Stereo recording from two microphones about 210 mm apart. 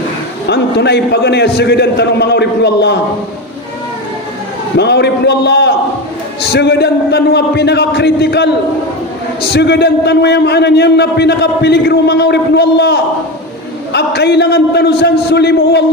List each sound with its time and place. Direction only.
0.5 s a man's voice: 55° left (ahead or behind)
4.7 s a man's voice: 55° left (ahead or behind)